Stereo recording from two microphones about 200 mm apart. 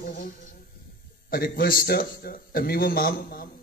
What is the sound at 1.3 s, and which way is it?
A man's voice, 50° left (ahead or behind).